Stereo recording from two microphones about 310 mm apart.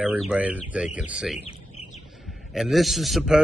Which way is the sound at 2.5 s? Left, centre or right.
Centre.